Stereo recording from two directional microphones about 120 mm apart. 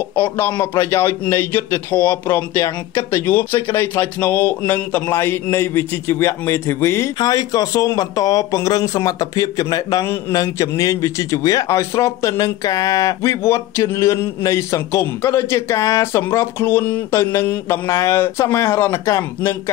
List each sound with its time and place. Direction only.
0.1 s speech: 15° left (ahead or behind)
7.2 s speech: 30° left (ahead or behind)